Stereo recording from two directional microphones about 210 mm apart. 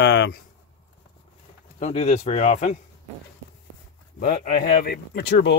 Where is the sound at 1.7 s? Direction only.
30° left (ahead or behind).